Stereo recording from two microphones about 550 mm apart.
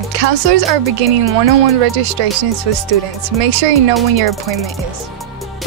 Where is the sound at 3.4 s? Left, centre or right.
Right.